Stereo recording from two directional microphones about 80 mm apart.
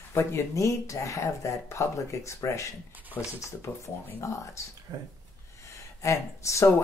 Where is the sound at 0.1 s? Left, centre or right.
Left.